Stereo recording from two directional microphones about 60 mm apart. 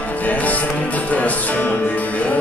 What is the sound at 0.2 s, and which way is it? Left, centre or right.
Music, left.